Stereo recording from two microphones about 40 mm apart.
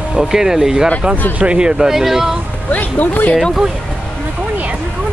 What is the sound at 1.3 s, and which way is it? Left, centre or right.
Speech, right.